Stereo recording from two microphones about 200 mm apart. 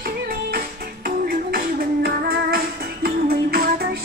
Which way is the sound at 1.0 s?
45° right (ahead or behind).